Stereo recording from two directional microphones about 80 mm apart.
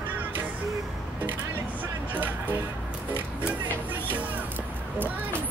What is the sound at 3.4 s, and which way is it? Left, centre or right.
Music, centre.